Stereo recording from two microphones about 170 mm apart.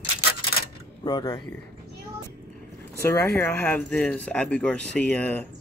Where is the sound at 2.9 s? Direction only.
15° left (ahead or behind).